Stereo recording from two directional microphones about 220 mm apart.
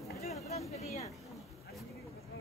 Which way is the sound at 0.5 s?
30° left (ahead or behind).